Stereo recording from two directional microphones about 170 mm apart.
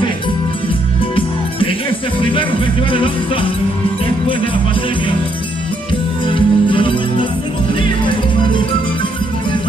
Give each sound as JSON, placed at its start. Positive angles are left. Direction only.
{"t": 6.2, "sound": "music", "side_deg": 30}